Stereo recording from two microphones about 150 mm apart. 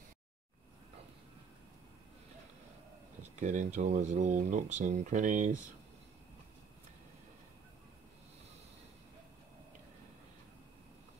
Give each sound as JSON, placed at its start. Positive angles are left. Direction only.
{"t": 3.3, "sound": "speech", "side_deg": -55}